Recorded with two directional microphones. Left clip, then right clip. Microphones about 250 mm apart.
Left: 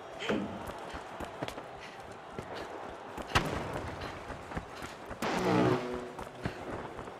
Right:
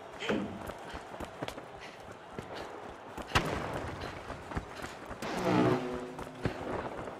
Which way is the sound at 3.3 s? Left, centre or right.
Centre.